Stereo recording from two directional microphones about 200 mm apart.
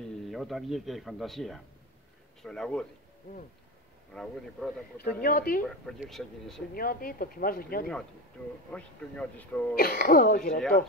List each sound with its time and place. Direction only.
0.3 s speech: centre (ahead or behind)
4.1 s speech: 5° left (ahead or behind)
4.9 s speech: 45° left (ahead or behind)
5.9 s speech: centre (ahead or behind)
6.7 s speech: 45° left (ahead or behind)
8.7 s speech: 5° left (ahead or behind)
9.8 s speech: 50° left (ahead or behind)